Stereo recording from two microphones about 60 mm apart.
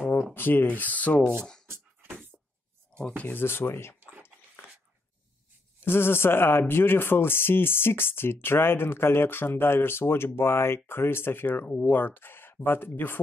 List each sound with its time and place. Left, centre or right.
0.3 s speech: left
3.3 s speech: left
5.9 s speech: left